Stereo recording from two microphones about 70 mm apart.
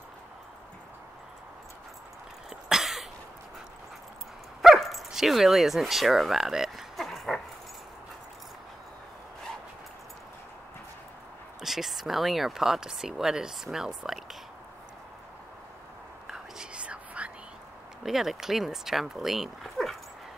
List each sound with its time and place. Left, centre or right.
2.5 s cough: centre
4.6 s dog: centre
11.6 s speech: centre
16.3 s whispering: centre
18.0 s speech: centre